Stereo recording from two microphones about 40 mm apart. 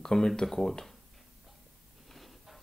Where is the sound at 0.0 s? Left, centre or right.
Centre.